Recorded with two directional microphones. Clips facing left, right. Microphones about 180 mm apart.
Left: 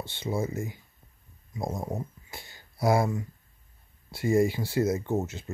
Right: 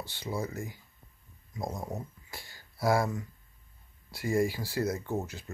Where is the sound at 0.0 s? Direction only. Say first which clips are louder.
Left 5 dB; 25° left (ahead or behind).